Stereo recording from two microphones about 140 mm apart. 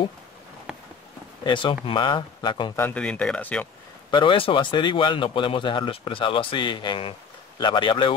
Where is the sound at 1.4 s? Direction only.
35° left (ahead or behind).